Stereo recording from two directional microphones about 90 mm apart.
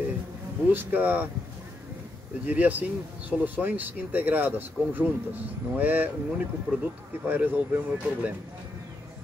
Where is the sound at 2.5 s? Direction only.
15° right (ahead or behind).